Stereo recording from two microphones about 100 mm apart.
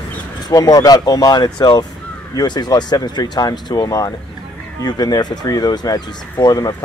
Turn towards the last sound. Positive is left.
turn(degrees=40)  # may be behind; listen again after turning